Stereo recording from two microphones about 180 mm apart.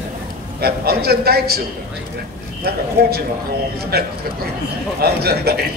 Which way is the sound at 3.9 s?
60° right (ahead or behind).